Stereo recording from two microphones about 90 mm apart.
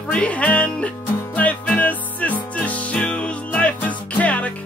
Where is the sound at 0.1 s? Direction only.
15° left (ahead or behind).